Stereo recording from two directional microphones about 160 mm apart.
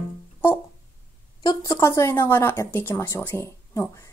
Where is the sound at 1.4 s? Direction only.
20° left (ahead or behind).